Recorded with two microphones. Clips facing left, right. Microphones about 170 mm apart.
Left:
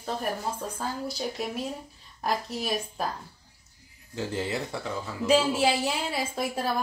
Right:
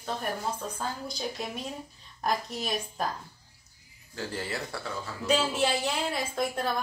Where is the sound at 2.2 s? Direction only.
5° left (ahead or behind).